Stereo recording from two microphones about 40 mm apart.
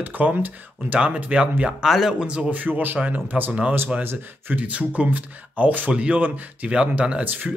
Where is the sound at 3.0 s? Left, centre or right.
Right.